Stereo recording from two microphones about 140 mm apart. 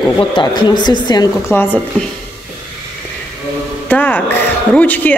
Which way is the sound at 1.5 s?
15° left (ahead or behind).